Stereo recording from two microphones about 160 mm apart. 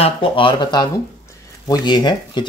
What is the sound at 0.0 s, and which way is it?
Speech, 35° left (ahead or behind).